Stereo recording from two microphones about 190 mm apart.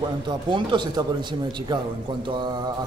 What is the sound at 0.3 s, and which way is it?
Speech, 25° right (ahead or behind).